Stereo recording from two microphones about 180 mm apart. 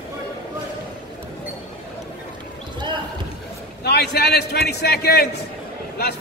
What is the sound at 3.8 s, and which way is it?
A man's voice, 65° left (ahead or behind).